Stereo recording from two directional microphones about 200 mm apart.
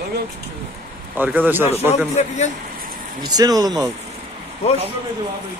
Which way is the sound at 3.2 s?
20° right (ahead or behind).